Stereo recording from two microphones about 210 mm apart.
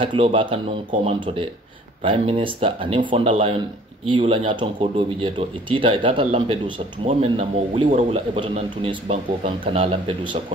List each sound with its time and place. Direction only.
0.0 s a man's voice: 25° right (ahead or behind)